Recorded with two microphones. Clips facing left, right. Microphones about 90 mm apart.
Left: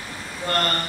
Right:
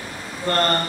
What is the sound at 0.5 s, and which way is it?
Speech, 35° right (ahead or behind).